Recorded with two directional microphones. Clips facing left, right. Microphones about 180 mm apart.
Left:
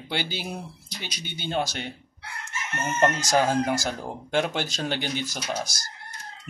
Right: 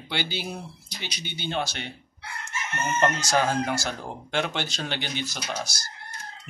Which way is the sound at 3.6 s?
45° left (ahead or behind).